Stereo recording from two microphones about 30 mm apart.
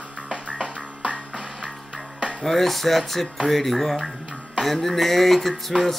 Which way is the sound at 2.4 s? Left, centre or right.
Centre.